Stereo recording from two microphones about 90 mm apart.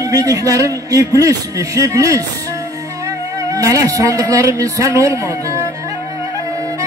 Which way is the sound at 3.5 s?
40° right (ahead or behind).